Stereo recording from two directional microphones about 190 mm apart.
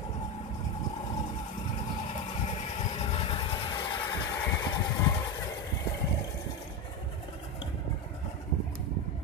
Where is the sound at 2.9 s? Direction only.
30° left (ahead or behind).